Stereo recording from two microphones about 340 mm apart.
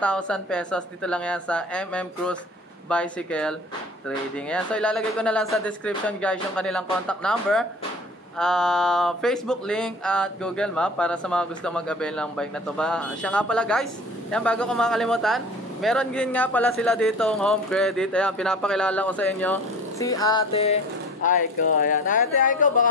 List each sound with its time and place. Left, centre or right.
0.0 s speech: centre; by 22.8 s left